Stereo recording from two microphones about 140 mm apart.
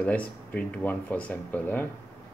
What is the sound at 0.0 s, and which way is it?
Speech, 10° left (ahead or behind).